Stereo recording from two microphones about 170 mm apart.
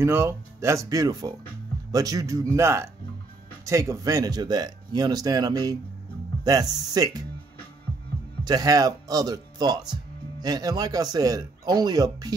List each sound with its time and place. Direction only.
0.0 s speech: 15° right (ahead or behind)
8.5 s speech: 20° right (ahead or behind)